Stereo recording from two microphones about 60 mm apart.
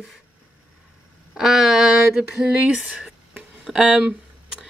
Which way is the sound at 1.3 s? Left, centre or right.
Centre.